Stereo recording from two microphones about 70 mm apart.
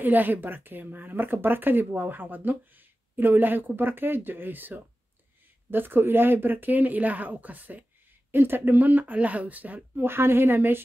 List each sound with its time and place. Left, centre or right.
0.0 s speech: right
10.0 s speech: right